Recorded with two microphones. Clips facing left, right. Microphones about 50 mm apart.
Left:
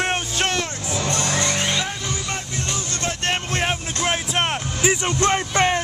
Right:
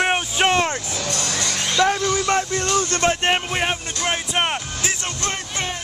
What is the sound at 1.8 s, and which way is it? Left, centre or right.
Vehicle, right.